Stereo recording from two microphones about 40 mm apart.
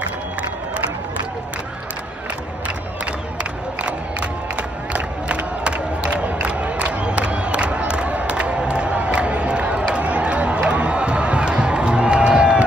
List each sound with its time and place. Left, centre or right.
3.8 s crowd: right